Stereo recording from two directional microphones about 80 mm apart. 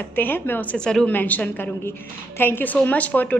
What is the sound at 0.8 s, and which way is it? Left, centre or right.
Speech, centre.